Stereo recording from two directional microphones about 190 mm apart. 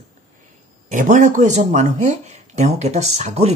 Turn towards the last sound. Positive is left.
turn(degrees=-35)  # may be behind; listen again after turning